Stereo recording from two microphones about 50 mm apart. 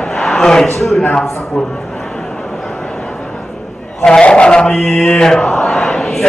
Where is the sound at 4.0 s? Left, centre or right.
Centre.